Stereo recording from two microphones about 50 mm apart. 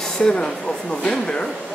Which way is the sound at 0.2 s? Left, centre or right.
Centre.